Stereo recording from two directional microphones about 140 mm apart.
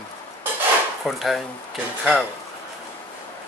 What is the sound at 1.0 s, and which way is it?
Speech, centre (ahead or behind).